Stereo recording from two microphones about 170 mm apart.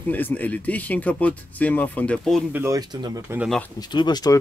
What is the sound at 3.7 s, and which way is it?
Speech, 25° left (ahead or behind).